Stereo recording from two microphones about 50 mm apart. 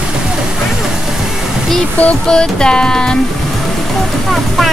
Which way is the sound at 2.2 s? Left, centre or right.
Centre.